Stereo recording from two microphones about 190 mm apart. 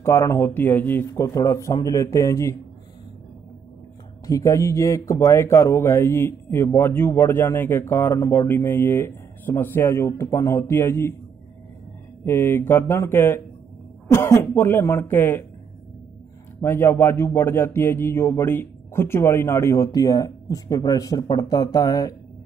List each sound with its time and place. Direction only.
0.0 s speech: 15° left (ahead or behind)
4.3 s speech: 15° left (ahead or behind)
12.3 s speech: 15° left (ahead or behind)
16.6 s speech: 10° left (ahead or behind)